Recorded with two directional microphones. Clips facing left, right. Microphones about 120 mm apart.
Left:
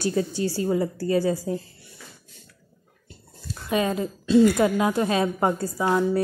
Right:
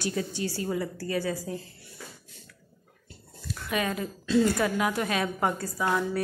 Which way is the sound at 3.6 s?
25° left (ahead or behind).